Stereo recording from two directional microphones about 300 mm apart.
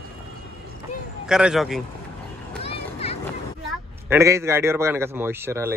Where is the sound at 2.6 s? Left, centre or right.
Centre.